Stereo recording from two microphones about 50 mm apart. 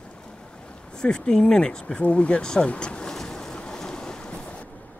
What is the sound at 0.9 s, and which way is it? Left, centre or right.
Speech, centre.